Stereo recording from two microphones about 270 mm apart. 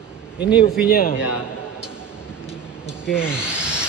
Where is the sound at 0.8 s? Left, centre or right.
Left.